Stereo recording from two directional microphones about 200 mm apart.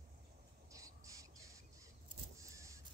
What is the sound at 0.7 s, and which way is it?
Crow, 15° right (ahead or behind).